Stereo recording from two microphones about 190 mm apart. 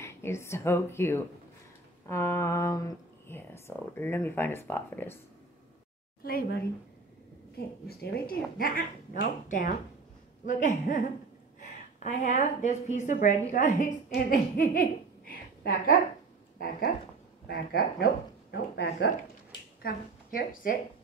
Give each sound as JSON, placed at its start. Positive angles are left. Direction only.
{"t": 0.0, "sound": "speech", "side_deg": 15}
{"t": 6.2, "sound": "a woman's voice", "side_deg": 50}
{"t": 12.0, "sound": "a woman's voice", "side_deg": 40}
{"t": 19.8, "sound": "a woman's voice", "side_deg": 45}